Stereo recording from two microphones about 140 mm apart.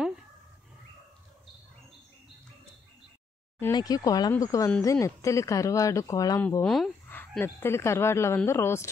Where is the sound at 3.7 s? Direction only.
30° left (ahead or behind).